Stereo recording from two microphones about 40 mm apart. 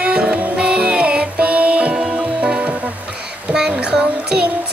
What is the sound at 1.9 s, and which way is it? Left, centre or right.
Music, centre.